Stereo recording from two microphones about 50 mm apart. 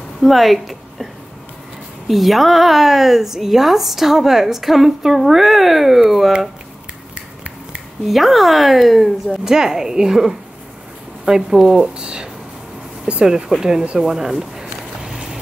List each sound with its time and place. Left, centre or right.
0.2 s a woman's voice: centre
2.0 s a woman's voice: centre
7.2 s finger snapping: right
8.1 s a woman's voice: centre
13.9 s a sound: centre